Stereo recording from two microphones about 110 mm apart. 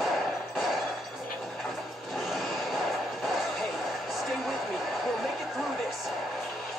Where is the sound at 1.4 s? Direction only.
Centre (ahead or behind).